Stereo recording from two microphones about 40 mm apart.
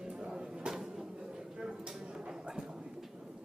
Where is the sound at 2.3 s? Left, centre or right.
Centre.